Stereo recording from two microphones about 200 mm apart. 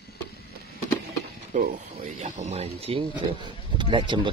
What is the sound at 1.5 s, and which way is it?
Speech, 50° right (ahead or behind).